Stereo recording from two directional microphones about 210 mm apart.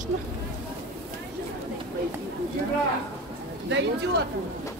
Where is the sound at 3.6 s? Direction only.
55° right (ahead or behind).